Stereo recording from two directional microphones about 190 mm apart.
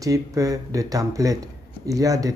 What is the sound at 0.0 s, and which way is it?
Speech, 15° right (ahead or behind).